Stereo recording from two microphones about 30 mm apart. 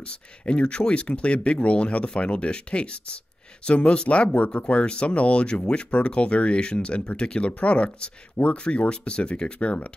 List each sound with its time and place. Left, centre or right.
0.0 s speech: left